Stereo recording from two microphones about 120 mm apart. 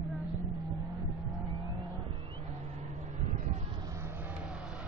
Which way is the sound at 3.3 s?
85° right.